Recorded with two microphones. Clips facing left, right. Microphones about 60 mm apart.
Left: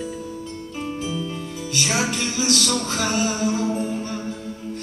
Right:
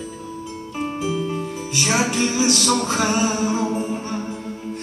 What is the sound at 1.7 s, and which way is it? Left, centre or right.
Music, right.